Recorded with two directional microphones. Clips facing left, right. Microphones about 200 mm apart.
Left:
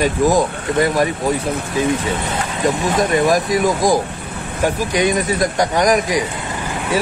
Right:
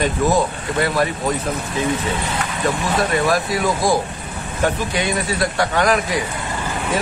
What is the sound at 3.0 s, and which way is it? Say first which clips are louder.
Speech: left 3 dB; 15° left (ahead or behind).